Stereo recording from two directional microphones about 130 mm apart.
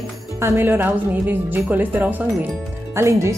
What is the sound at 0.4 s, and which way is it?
A woman's voice, 20° right (ahead or behind).